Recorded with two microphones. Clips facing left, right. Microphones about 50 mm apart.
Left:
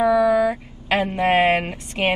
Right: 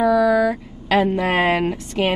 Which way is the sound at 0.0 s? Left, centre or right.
Left.